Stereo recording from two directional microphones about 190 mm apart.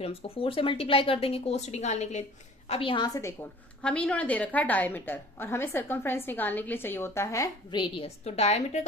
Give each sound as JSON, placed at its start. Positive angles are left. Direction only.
{"t": 0.0, "sound": "a woman's voice", "side_deg": 30}
{"t": 3.8, "sound": "a woman's voice", "side_deg": 5}